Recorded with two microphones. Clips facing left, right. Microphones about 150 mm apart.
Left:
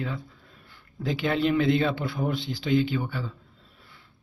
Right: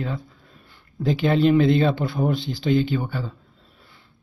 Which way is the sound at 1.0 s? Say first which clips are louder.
Right 6 dB; 30° right (ahead or behind).